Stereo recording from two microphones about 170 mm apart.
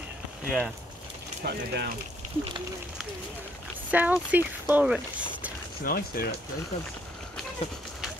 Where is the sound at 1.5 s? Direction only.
65° right (ahead or behind).